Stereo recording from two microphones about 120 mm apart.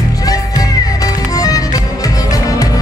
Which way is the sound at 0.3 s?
30° left (ahead or behind).